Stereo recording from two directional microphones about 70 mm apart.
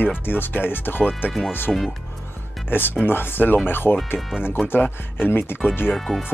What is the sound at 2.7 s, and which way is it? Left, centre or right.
Speech, left.